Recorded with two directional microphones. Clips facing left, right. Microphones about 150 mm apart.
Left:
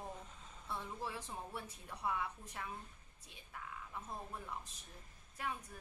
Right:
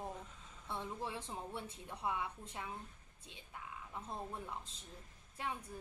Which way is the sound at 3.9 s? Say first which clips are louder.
Right 3 dB; 20° right (ahead or behind).